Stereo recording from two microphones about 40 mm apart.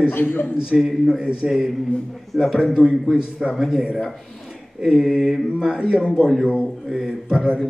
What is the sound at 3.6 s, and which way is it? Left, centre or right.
A man's voice, centre.